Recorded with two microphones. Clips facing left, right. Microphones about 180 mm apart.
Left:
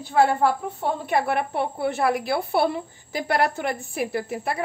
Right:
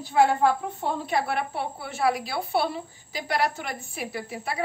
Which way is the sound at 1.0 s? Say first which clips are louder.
Left 5 dB; 55° left (ahead or behind).